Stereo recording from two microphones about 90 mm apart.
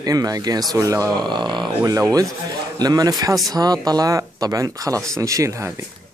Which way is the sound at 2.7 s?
45° right (ahead or behind).